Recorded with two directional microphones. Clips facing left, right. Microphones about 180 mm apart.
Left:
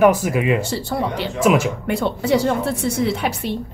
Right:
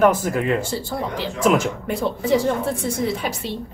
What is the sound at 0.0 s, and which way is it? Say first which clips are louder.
Speech: left 2 dB; 10° left (ahead or behind).